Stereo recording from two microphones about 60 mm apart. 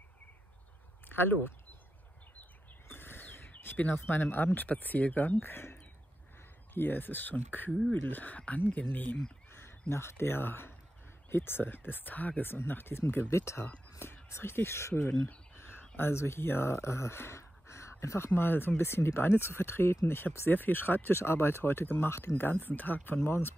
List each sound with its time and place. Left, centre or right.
1.0 s speech: left
2.9 s a sound: left
3.9 s speech: left
9.6 s speech: left
13.3 s speech: left
14.0 s a sound: left
14.3 s speech: left